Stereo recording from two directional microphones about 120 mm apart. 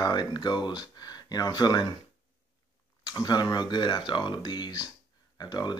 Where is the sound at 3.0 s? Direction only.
35° left (ahead or behind).